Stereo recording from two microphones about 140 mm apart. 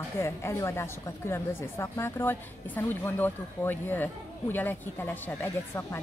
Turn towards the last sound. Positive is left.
turn(degrees=15)  # may be behind; listen again after turning